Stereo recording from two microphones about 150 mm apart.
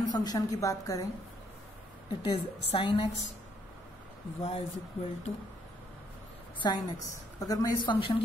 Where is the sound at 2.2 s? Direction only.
35° left (ahead or behind).